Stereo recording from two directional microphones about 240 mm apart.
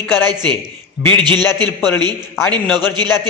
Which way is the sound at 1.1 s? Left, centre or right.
Centre.